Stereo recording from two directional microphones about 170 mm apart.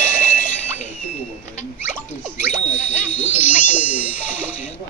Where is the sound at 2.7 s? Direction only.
10° left (ahead or behind).